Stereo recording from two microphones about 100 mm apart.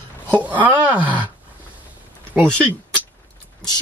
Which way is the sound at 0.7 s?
15° right (ahead or behind).